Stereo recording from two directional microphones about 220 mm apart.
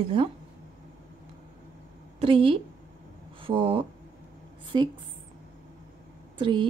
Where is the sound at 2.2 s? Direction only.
25° right (ahead or behind).